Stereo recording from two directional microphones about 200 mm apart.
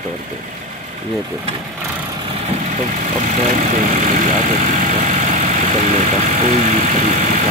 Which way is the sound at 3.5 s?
40° right (ahead or behind).